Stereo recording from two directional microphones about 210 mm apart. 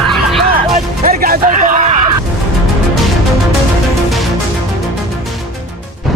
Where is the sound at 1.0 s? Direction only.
45° right (ahead or behind).